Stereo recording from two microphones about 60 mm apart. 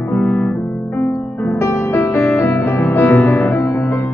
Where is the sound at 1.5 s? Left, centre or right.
Left.